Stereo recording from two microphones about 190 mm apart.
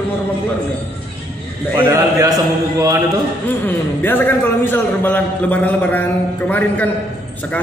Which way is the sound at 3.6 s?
10° left (ahead or behind).